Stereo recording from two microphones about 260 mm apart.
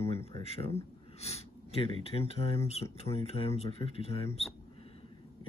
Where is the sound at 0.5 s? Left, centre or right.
Left.